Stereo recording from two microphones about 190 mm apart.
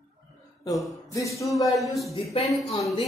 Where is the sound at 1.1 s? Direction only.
15° left (ahead or behind).